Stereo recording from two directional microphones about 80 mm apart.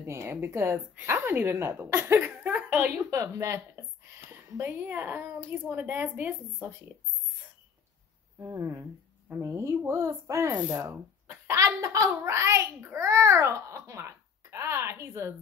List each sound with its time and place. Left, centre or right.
0.0 s a child's voice: right
2.5 s a sound: centre
3.1 s a child's voice: right
4.3 s a woman's voice: right
8.4 s a woman's voice: right
9.4 s a child's voice: right
11.5 s a child's voice: right